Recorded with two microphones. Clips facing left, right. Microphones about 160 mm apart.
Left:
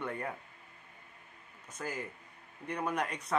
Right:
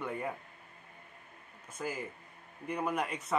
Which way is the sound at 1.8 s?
5° right (ahead or behind).